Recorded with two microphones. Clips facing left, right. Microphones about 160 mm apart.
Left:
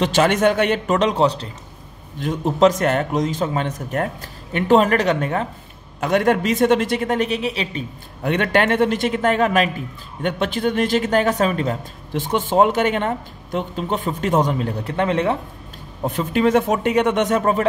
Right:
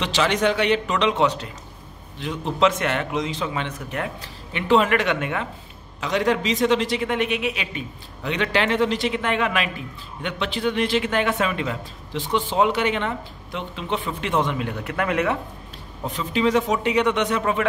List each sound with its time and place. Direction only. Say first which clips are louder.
0.0 s a man's voice: left 5 dB; 50° left (ahead or behind); by 1.5 s 35° left (ahead or behind)
2.1 s a man's voice: left 5 dB; 45° left (ahead or behind)
5.9 s a man's voice: left 4 dB; 50° left (ahead or behind); by 7.8 s 35° left (ahead or behind)
8.2 s a man's voice: left 5 dB; 50° left (ahead or behind); by 15.3 s 30° left (ahead or behind)
16.1 s a man's voice: left 4 dB; 50° left (ahead or behind)